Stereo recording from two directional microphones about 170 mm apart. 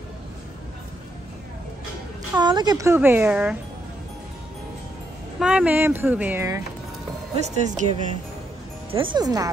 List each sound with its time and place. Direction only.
2.3 s speech: 25° right (ahead or behind); by 3.5 s 5° right (ahead or behind)
5.4 s speech: 5° right (ahead or behind)
7.3 s speech: 40° right (ahead or behind)
8.9 s speech: 30° right (ahead or behind)